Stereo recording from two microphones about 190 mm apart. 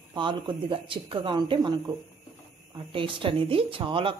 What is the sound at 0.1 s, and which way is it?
Speech, 25° right (ahead or behind).